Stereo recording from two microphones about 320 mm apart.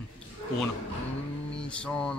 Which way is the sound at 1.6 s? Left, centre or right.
Centre.